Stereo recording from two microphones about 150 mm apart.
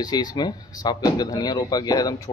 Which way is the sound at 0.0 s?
25° left (ahead or behind).